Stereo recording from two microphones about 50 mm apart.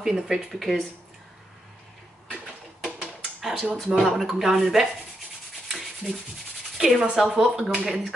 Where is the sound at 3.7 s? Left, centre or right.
Centre.